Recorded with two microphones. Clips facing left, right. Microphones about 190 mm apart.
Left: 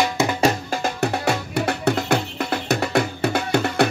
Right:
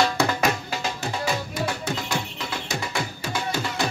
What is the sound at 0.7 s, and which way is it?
Music, 55° left (ahead or behind).